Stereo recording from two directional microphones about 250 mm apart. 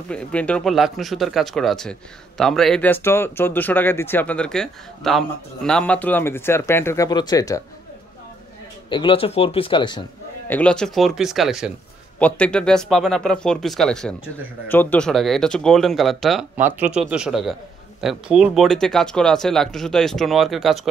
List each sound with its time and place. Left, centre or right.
0.1 s speech: centre
8.9 s speech: left
10.5 s speech: centre